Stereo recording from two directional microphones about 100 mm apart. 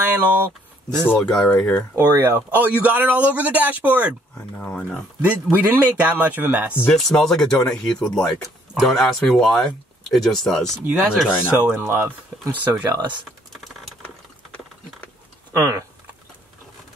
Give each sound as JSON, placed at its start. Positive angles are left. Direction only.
{"t": 0.0, "sound": "speech", "side_deg": -20}
{"t": 1.1, "sound": "speech", "side_deg": 5}
{"t": 2.1, "sound": "speech", "side_deg": -20}
{"t": 4.6, "sound": "speech", "side_deg": 15}
{"t": 5.2, "sound": "speech", "side_deg": -20}
{"t": 6.9, "sound": "speech", "side_deg": 5}
{"t": 11.6, "sound": "speech", "side_deg": -20}
{"t": 14.0, "sound": "ratchet", "side_deg": 15}
{"t": 15.5, "sound": "speech", "side_deg": -30}